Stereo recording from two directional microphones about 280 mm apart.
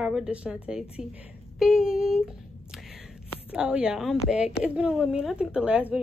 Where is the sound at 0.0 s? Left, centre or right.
Centre.